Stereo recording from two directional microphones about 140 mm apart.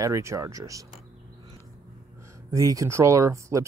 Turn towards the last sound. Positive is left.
turn(degrees=-20)  # may be behind; listen again after turning